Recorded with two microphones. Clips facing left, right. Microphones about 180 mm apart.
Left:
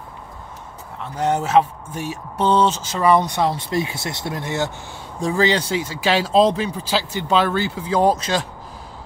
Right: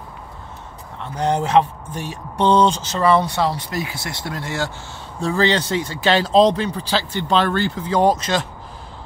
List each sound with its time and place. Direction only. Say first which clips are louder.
1.1 s speech: even; 5° left (ahead or behind)